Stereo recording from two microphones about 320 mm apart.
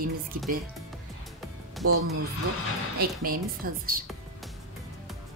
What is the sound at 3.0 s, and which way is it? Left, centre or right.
A woman's voice, right.